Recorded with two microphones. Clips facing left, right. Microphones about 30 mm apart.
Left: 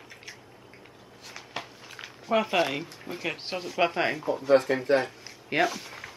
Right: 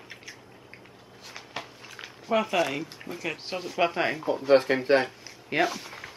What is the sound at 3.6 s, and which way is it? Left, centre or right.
Speech, centre.